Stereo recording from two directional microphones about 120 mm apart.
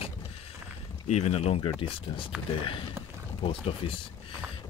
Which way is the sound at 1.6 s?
45° left (ahead or behind).